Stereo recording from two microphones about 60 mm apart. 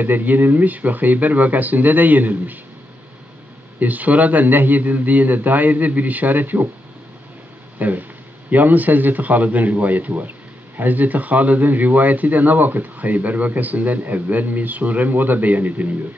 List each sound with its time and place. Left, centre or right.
0.0 s speech: right
3.8 s speech: right
7.8 s speech: right